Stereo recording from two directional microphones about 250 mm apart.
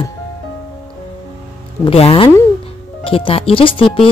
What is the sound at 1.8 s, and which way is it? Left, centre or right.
Speech, left.